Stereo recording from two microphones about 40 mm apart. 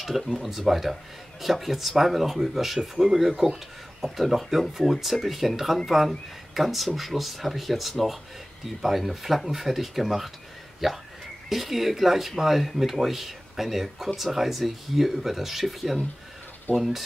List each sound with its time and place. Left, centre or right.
0.0 s speech: centre